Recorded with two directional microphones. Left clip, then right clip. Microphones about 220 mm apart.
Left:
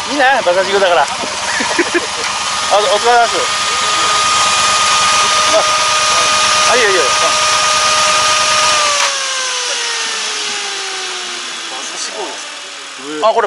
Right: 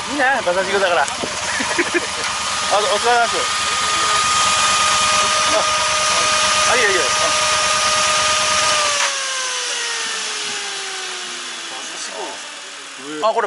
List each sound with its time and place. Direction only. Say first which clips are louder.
0.1 s speech: left 6 dB; 20° right (ahead or behind)
2.2 s vehicle: left 4 dB; 5° right (ahead or behind)